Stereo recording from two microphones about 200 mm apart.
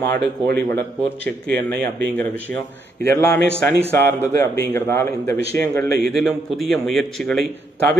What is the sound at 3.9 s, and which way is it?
A man's voice, 10° left (ahead or behind).